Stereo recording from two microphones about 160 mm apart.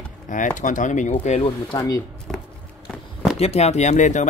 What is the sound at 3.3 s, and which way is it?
Speech, 40° left (ahead or behind).